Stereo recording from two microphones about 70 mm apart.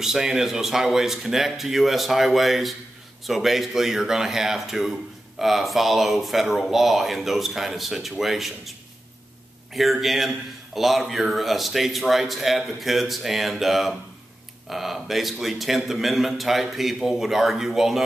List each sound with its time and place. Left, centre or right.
0.0 s a man's voice: centre
9.8 s a man's voice: centre